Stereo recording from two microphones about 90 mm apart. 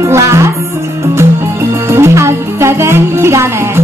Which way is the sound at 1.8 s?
30° right (ahead or behind).